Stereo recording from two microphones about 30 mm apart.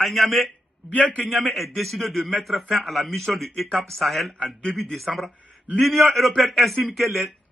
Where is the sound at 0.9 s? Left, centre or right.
Left.